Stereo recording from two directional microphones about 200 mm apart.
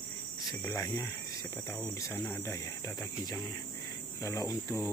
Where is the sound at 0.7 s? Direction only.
15° left (ahead or behind).